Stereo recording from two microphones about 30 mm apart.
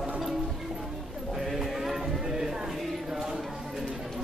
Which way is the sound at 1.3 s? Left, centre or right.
Centre.